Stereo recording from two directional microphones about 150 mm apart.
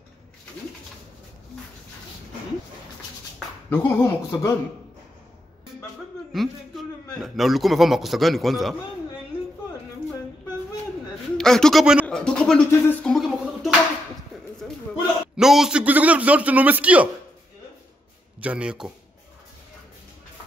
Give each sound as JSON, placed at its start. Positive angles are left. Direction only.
{"t": 3.7, "sound": "speech", "side_deg": 15}
{"t": 6.3, "sound": "a sound", "side_deg": 0}
{"t": 11.3, "sound": "a man's voice", "side_deg": 5}
{"t": 12.3, "sound": "a man's voice", "side_deg": 5}
{"t": 18.4, "sound": "a man's voice", "side_deg": -10}